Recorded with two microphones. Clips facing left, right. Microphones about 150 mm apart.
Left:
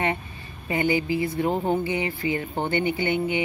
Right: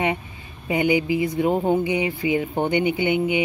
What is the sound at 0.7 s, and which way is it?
Speech, 15° right (ahead or behind).